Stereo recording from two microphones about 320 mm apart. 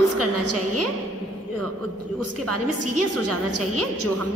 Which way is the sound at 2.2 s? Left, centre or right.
Right.